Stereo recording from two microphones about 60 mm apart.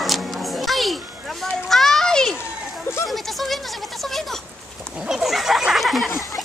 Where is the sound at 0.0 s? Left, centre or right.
Centre.